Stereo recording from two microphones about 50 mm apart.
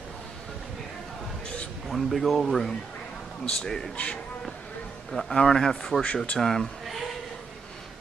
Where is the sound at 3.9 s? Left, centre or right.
Left.